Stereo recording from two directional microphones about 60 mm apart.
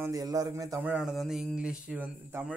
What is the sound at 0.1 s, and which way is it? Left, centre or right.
Speech, right.